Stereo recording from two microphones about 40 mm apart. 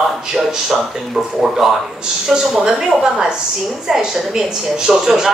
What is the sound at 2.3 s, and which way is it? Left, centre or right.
Speech, centre.